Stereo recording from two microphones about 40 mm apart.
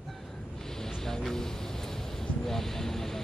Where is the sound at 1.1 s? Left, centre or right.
Centre.